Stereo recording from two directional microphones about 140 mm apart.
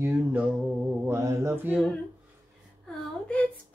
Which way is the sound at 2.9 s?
5° left (ahead or behind).